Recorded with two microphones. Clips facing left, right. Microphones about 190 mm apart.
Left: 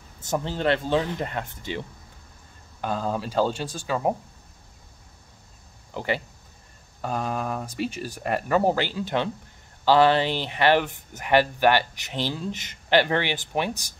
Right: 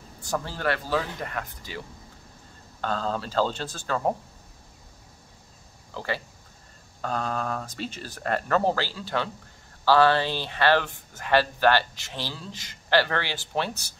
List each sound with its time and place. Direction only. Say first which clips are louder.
0.2 s speech: left 3 dB; 20° left (ahead or behind)
2.8 s speech: left 1 dB; 10° left (ahead or behind)
5.9 s speech: left 4 dB; 20° left (ahead or behind)